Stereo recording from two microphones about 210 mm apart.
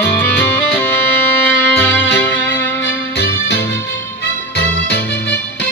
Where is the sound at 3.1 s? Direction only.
50° left (ahead or behind).